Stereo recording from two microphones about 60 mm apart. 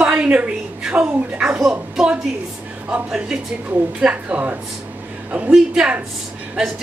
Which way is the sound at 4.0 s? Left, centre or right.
Centre.